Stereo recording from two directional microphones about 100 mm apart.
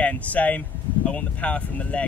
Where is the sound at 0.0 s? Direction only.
15° left (ahead or behind).